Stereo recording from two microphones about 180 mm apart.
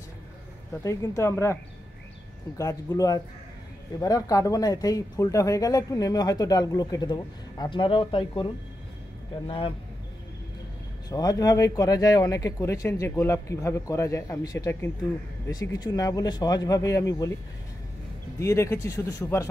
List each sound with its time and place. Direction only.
0.8 s speech: 15° left (ahead or behind)
9.5 s speech: 30° left (ahead or behind)
11.1 s speech: 20° left (ahead or behind)
18.4 s speech: 15° left (ahead or behind)